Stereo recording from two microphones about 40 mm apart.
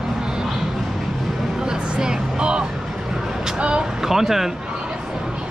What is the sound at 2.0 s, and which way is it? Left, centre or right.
Speech, centre.